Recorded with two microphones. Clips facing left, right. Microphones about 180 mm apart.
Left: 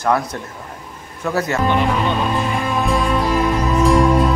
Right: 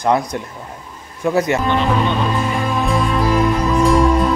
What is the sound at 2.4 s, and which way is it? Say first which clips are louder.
Music: right 1 dB; centre (ahead or behind).